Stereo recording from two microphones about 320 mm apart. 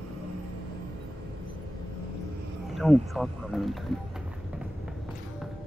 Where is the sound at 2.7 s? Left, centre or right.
Centre.